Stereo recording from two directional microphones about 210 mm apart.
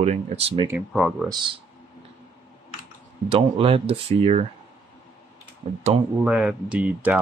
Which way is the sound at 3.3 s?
25° right (ahead or behind).